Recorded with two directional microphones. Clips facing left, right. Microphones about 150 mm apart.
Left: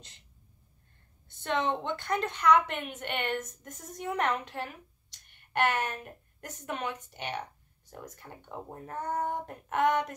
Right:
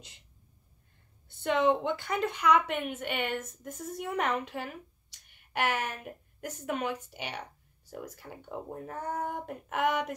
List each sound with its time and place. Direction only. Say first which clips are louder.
1.4 s a woman's voice: right 4 dB; 10° right (ahead or behind)